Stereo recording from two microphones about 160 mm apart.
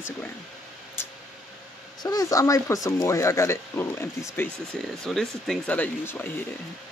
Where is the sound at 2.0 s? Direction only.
20° left (ahead or behind).